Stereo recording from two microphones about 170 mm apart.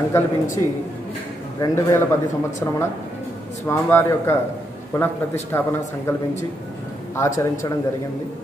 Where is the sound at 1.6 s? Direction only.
15° left (ahead or behind).